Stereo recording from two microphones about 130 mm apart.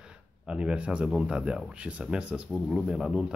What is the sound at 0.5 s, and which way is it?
Speech, 10° right (ahead or behind).